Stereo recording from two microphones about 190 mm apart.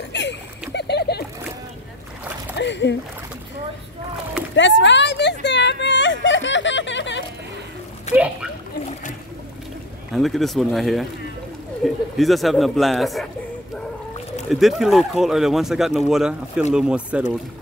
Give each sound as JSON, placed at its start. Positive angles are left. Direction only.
{"t": 0.1, "sound": "a sound", "side_deg": 65}
{"t": 2.5, "sound": "speech", "side_deg": 65}
{"t": 4.6, "sound": "a sound", "side_deg": 75}
{"t": 8.1, "sound": "splash", "side_deg": 35}
{"t": 10.1, "sound": "speech", "side_deg": 0}
{"t": 14.5, "sound": "speech", "side_deg": 0}